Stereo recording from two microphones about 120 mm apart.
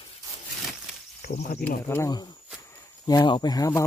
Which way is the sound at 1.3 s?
75° left (ahead or behind).